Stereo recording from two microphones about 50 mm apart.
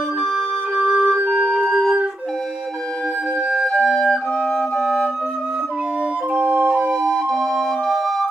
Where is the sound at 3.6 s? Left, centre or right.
Centre.